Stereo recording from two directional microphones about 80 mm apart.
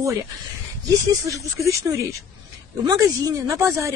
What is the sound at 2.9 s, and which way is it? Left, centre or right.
A woman's voice, right.